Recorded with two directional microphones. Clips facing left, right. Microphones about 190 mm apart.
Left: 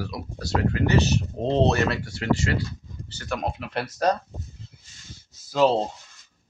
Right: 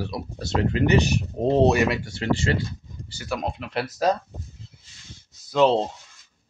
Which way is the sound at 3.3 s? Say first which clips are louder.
Right 1 dB; centre (ahead or behind).